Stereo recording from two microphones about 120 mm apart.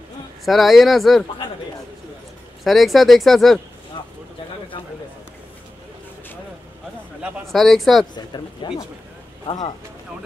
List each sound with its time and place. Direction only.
0.5 s speech: centre (ahead or behind)
2.6 s speech: centre (ahead or behind)
3.9 s a sound: 40° left (ahead or behind)
7.2 s a sound: 10° right (ahead or behind)
7.4 s speech: centre (ahead or behind)
8.3 s speech: 40° left (ahead or behind)
9.5 s speech: 50° left (ahead or behind)